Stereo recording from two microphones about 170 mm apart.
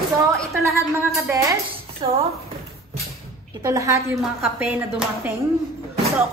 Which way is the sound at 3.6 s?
20° right (ahead or behind).